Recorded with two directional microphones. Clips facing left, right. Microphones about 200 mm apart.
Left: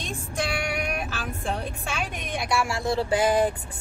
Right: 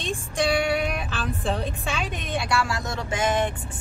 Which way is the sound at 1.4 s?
10° left (ahead or behind).